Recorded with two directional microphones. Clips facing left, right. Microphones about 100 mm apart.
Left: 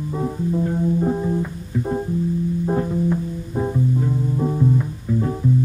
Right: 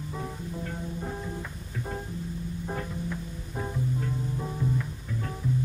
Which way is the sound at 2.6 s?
30° left (ahead or behind).